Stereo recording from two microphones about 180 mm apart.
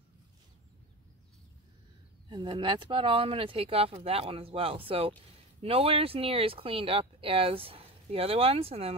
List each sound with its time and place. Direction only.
2.2 s speech: 25° right (ahead or behind)